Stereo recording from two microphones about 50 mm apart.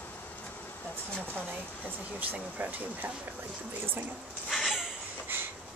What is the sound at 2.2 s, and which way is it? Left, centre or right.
Speech, right.